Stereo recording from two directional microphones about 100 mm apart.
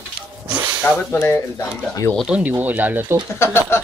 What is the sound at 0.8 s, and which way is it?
Speech, 20° left (ahead or behind).